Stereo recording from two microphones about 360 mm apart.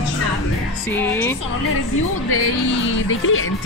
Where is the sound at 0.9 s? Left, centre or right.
Centre.